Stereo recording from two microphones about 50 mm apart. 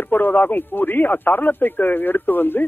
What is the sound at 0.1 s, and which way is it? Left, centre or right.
Speech, left.